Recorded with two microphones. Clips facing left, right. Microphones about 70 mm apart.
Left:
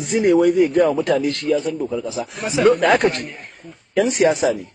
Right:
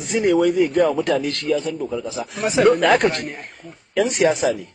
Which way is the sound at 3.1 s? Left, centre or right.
Right.